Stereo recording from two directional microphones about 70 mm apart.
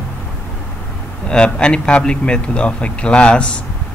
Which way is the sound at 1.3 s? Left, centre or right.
Centre.